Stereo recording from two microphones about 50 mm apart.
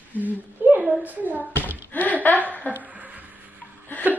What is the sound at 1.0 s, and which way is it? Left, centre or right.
Speech, right.